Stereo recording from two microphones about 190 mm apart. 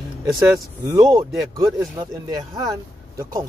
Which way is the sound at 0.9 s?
20° right (ahead or behind).